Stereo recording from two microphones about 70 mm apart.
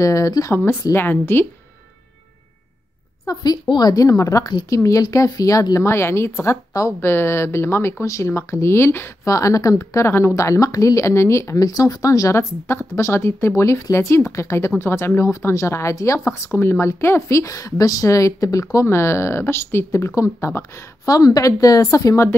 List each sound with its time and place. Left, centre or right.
0.0 s speech: left
0.9 s speech: left
3.3 s a woman's voice: left
9.2 s speech: left
9.8 s speech: left
18.9 s speech: left
21.1 s a woman's voice: left